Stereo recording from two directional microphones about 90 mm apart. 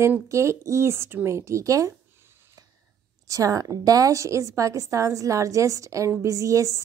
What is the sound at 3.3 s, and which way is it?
Speech, 40° right (ahead or behind).